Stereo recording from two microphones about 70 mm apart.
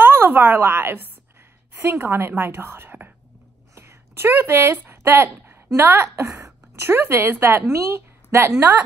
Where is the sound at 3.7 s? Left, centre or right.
Right.